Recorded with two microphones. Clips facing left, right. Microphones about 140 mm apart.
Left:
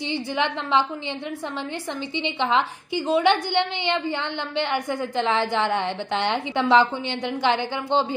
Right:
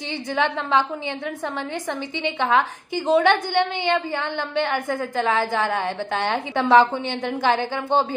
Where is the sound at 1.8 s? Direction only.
20° left (ahead or behind).